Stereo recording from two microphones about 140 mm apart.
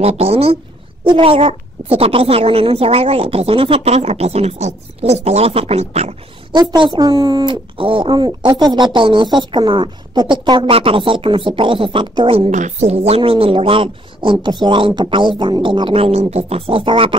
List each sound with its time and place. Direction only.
0.0 s a woman's voice: 45° right (ahead or behind)
6.5 s speech: 30° right (ahead or behind)